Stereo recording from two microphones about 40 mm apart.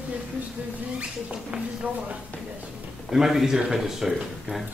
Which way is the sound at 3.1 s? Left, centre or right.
Centre.